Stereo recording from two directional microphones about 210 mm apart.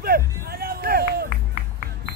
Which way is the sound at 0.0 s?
45° right (ahead or behind).